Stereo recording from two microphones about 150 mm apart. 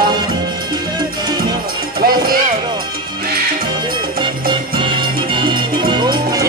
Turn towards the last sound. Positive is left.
turn(degrees=-30)  # may be behind; listen again after turning